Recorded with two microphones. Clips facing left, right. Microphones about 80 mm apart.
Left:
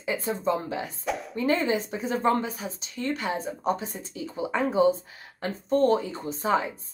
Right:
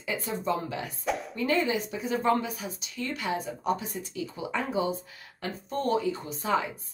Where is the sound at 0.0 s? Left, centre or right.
Left.